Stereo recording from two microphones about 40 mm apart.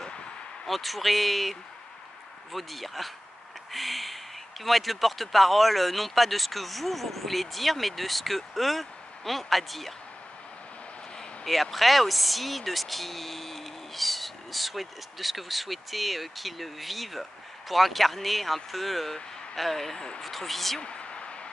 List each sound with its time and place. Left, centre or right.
0.7 s speech: centre
11.4 s speech: centre
20.8 s a sound: left